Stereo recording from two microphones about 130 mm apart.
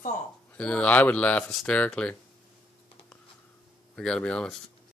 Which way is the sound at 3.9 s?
5° left (ahead or behind).